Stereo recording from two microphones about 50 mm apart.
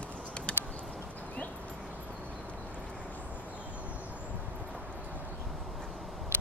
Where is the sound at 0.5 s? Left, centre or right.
Left.